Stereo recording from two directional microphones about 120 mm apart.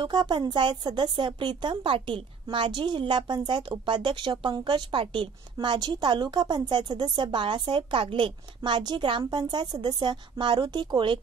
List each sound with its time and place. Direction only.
0.0 s a woman's voice: 40° right (ahead or behind)